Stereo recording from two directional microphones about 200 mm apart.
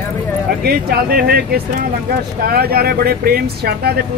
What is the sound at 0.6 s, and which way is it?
Speech, 50° right (ahead or behind).